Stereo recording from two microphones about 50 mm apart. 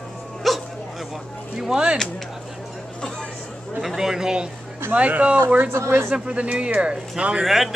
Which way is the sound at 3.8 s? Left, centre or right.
Centre.